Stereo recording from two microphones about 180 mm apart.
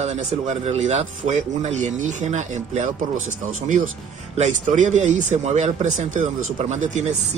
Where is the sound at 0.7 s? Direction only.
40° right (ahead or behind).